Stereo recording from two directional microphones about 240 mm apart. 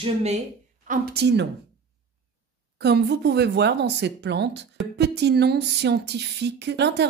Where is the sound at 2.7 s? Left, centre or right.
Right.